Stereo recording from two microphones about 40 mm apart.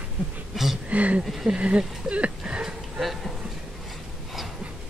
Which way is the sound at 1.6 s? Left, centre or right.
Right.